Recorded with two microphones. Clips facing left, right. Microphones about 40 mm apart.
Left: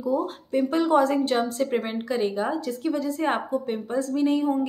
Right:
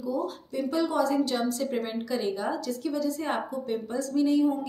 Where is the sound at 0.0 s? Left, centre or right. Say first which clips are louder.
Left 5 dB; left.